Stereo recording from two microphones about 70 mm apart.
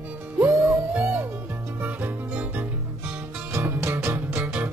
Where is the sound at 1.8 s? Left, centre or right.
Right.